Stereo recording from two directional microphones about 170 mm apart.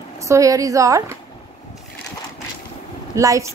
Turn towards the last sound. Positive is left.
turn(degrees=-20)  # may be behind; listen again after turning